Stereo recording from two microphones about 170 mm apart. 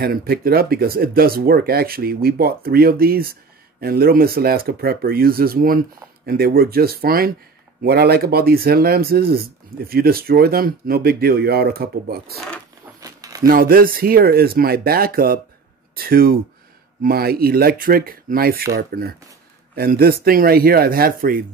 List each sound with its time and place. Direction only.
0.0 s speech: 60° right (ahead or behind)
13.0 s a sound: 20° right (ahead or behind)
13.5 s speech: 55° right (ahead or behind)